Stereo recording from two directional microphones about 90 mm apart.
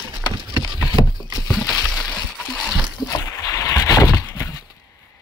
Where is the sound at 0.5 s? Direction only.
50° right (ahead or behind).